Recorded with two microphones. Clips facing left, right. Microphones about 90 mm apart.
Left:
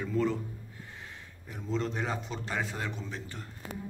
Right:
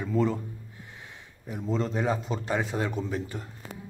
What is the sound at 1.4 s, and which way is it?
Speech, 15° right (ahead or behind).